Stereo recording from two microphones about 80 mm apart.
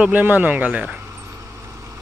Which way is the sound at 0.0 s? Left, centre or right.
Right.